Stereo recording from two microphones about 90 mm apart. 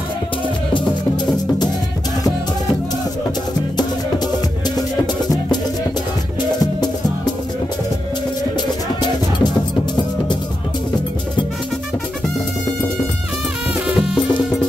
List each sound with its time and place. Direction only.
0.7 s music: 55° left (ahead or behind)
8.5 s music: 55° left (ahead or behind)
13.8 s music: 5° right (ahead or behind)